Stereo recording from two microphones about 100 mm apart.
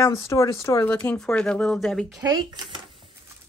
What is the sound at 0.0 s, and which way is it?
Speech, 30° left (ahead or behind).